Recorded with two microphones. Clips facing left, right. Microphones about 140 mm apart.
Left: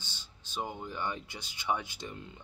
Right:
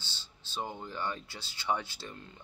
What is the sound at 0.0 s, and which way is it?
Speech, 15° left (ahead or behind).